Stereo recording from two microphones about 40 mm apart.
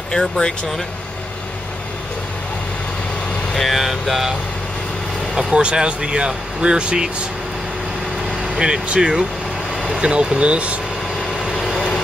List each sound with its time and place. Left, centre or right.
0.1 s speech: centre
3.5 s speech: centre
5.5 s speech: right
8.5 s speech: centre